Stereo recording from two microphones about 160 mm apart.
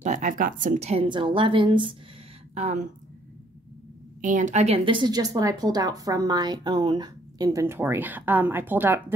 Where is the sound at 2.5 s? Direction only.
45° right (ahead or behind).